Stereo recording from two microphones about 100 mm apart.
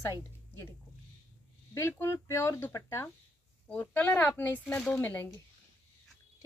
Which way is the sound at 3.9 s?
15° left (ahead or behind).